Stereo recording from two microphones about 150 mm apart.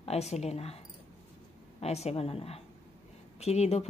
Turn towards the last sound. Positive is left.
turn(degrees=45)  # may be behind; listen again after turning